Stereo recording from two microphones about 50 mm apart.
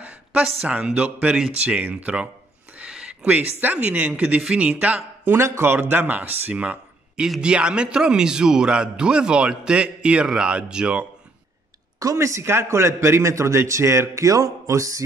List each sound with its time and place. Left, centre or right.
0.0 s a sound: right
0.7 s speech: right
2.8 s a sound: centre
3.3 s speech: right
5.3 s speech: right
5.8 s speech: right
7.2 s a man's voice: centre
12.2 s a man's voice: right